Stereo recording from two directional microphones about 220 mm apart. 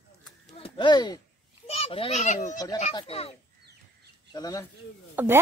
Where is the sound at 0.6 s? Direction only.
25° left (ahead or behind).